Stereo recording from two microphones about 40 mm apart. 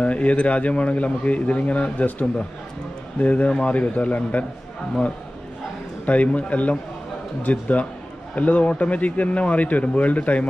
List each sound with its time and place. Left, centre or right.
0.0 s a man's voice: left
6.0 s a man's voice: left